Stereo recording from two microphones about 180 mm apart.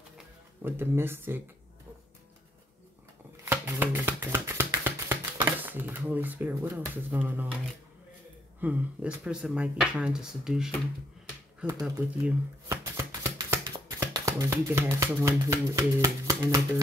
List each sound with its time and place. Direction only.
0.6 s speech: 10° right (ahead or behind)
3.4 s a sound: 10° right (ahead or behind)
8.5 s speech: 10° right (ahead or behind)
11.8 s speech: 10° right (ahead or behind)